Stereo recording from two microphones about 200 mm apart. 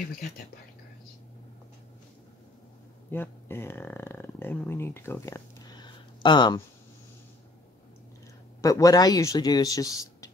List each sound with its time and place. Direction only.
3.1 s speech: 10° left (ahead or behind)
8.5 s speech: 15° left (ahead or behind)